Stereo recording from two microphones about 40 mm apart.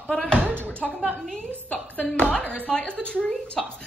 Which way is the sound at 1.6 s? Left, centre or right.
Left.